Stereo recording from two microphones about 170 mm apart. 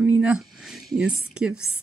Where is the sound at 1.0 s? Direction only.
5° right (ahead or behind).